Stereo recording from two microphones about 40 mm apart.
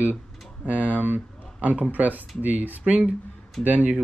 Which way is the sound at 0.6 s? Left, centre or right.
Right.